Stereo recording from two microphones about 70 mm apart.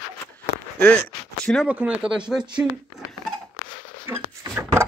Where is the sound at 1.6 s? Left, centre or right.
Centre.